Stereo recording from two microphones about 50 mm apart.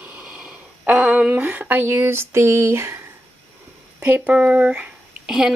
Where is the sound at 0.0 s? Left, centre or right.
Right.